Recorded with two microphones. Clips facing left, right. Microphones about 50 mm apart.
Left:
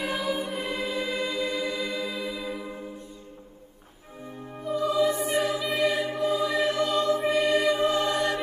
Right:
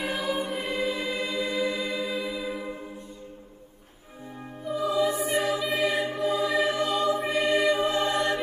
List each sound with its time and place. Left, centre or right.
0.0 s choir: centre
0.7 s choir: right
2.0 s music: centre
4.6 s music: centre
7.3 s music: right
7.6 s choir: centre
7.9 s choir: right